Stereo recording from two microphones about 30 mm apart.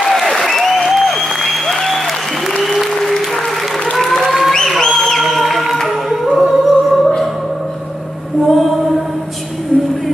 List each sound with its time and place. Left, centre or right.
0.0 s applause: centre
2.6 s applause: centre
2.9 s applause: centre
4.2 s a sound: centre
4.5 s a sound: centre
5.3 s music: centre
5.9 s singing: centre
6.5 s music: centre
7.0 s music: centre
8.5 s female singing: centre